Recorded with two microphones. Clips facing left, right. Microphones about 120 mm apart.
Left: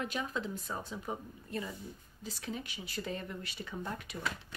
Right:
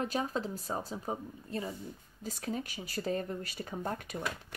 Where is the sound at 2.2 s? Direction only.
45° right (ahead or behind).